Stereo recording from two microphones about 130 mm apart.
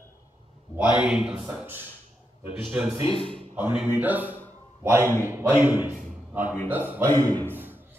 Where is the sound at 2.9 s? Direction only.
45° left (ahead or behind).